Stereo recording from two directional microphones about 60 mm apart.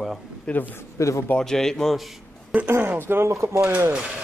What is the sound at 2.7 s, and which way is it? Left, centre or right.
Speech, right.